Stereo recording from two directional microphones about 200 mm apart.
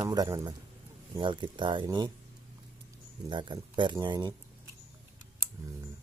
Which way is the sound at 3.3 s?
25° right (ahead or behind).